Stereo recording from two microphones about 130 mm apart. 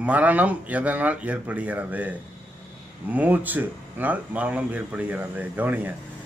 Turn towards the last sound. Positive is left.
turn(degrees=-15)  # may be behind; listen again after turning